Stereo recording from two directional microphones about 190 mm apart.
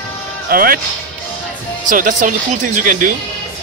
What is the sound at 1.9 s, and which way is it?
Speech, 45° right (ahead or behind).